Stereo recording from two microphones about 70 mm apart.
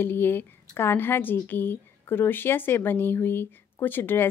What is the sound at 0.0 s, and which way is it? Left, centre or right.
A woman's voice, left.